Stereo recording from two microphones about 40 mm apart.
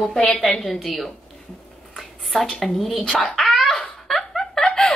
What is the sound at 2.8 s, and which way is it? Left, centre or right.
Speech, centre.